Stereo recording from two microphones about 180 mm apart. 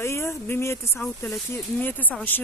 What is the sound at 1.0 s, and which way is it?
Speech, centre (ahead or behind).